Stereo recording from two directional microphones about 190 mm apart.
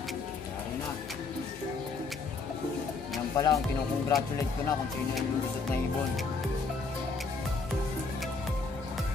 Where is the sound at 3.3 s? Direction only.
15° left (ahead or behind).